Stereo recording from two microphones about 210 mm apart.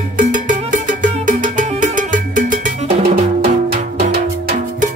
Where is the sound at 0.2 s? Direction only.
35° right (ahead or behind).